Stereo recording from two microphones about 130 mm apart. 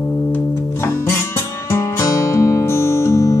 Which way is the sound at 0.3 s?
15° left (ahead or behind).